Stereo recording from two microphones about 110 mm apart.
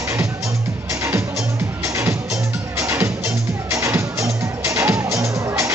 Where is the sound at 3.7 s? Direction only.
25° right (ahead or behind).